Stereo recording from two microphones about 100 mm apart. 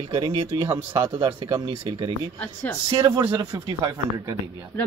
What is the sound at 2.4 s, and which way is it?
Speech, 15° left (ahead or behind).